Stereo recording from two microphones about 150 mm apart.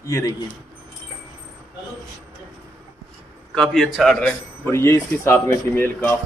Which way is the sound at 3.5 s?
5° left (ahead or behind).